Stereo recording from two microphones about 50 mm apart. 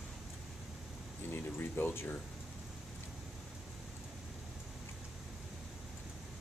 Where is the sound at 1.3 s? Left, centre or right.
Left.